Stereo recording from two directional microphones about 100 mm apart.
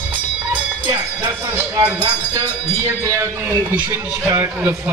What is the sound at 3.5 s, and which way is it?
Speech, 20° right (ahead or behind).